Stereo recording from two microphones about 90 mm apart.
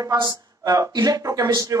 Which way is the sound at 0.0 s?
45° right (ahead or behind).